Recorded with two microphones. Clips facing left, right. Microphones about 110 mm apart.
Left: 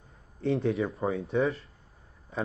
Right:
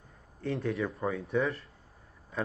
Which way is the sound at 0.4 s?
25° left (ahead or behind).